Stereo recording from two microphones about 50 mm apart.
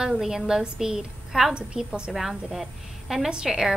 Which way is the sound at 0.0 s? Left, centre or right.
Centre.